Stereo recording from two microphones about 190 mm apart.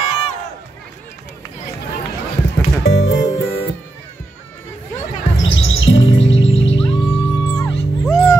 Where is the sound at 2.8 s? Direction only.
85° left.